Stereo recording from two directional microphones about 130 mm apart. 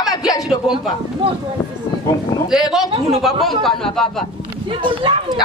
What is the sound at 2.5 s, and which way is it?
A man's voice, 5° right (ahead or behind).